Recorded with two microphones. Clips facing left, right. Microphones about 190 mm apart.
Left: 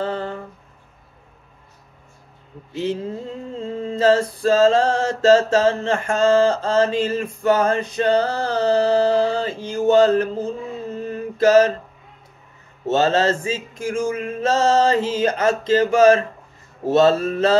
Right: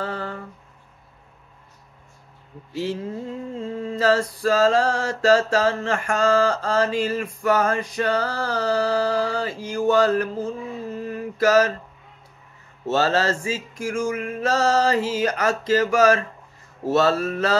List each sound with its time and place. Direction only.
0.0 s a sound: 25° left (ahead or behind)
2.7 s female singing: 20° left (ahead or behind)
12.8 s female singing: 20° left (ahead or behind)